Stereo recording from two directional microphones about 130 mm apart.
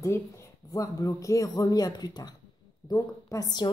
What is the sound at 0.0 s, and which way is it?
A woman's voice, 20° left (ahead or behind).